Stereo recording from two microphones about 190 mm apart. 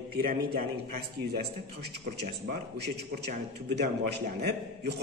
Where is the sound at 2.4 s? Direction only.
60° right (ahead or behind).